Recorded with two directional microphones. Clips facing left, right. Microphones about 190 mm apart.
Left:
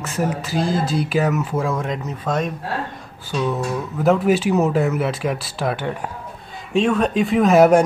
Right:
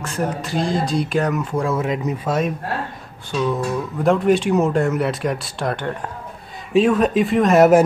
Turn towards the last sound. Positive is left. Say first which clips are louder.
# even
turn(degrees=0)  # may be behind; listen again after turning